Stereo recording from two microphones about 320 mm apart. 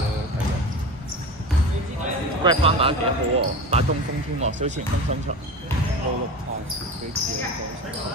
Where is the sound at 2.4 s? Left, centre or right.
Centre.